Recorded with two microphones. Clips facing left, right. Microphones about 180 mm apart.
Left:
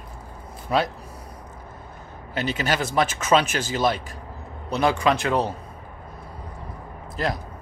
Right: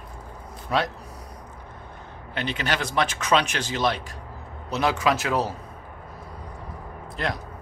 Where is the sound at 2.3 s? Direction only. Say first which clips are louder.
Left 3 dB; 45° left (ahead or behind).